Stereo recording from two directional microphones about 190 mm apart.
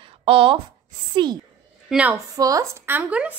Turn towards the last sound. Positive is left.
turn(degrees=-5)  # may be behind; listen again after turning